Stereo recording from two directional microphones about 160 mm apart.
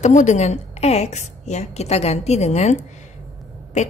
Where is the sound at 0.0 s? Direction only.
50° left (ahead or behind).